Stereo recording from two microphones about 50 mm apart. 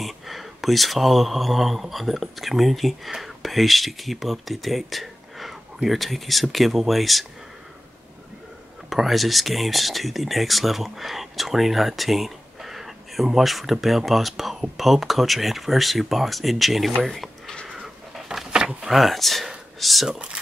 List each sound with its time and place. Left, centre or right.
0.0 s speech: centre
8.9 s speech: centre
17.6 s a sound: centre
18.8 s speech: centre
20.1 s speech: centre